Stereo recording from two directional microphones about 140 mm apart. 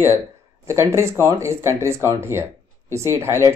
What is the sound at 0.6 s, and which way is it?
Speech, 20° right (ahead or behind).